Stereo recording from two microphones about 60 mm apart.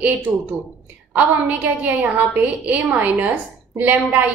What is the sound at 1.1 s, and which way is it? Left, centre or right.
A woman's voice, right.